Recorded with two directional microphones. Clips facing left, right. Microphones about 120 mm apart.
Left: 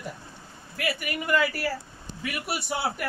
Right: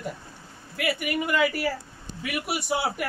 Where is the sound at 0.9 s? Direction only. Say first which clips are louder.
Even; 15° right (ahead or behind).